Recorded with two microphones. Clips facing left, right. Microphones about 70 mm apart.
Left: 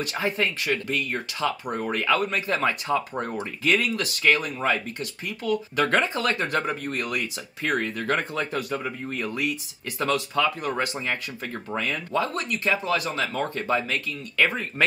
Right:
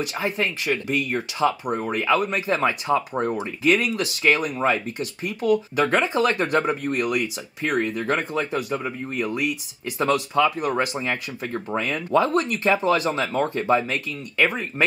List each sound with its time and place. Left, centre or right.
0.0 s speech: centre
6.1 s speech: right